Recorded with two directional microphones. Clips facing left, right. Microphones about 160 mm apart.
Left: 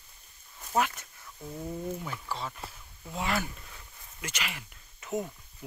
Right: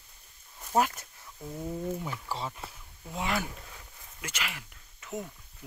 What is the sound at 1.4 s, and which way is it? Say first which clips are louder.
Speech: right 1 dB; 5° right (ahead or behind).